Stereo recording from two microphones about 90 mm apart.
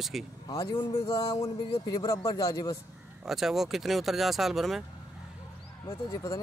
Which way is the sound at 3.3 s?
5° right (ahead or behind).